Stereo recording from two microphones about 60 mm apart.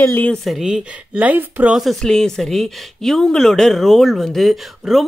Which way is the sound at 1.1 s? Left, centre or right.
Right.